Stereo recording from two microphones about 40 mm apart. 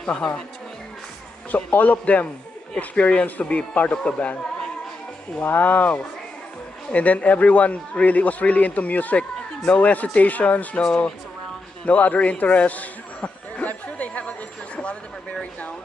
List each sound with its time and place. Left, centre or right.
0.0 s speech: left
1.5 s a man's voice: left
5.4 s a man's voice: left
11.8 s a sound: left